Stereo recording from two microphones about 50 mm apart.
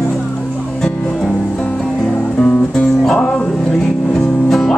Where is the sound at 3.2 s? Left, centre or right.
Left.